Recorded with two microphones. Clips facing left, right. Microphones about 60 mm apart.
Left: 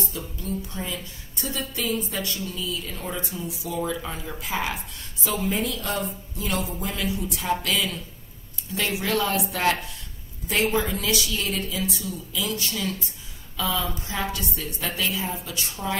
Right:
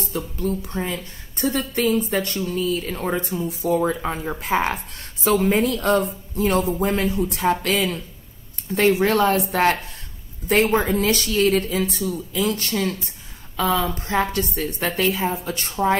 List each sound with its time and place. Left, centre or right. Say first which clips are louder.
0.1 s a woman's voice: right 7 dB; right